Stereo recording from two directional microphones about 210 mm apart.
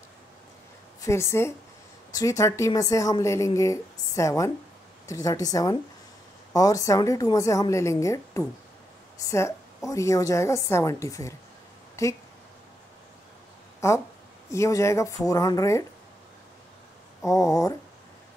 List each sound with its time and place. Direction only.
1.0 s a woman's voice: 15° left (ahead or behind)
13.7 s a woman's voice: 15° left (ahead or behind)
17.2 s a woman's voice: 15° left (ahead or behind)